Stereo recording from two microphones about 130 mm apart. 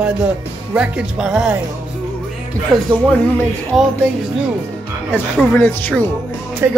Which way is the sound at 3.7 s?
5° left (ahead or behind).